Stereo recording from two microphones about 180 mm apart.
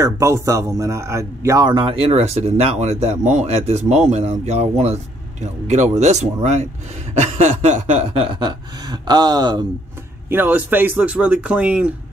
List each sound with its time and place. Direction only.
0.0 s speech: 15° right (ahead or behind); by 8.3 s 35° right (ahead or behind)
8.4 s speech: 25° right (ahead or behind)
10.3 s speech: 10° right (ahead or behind)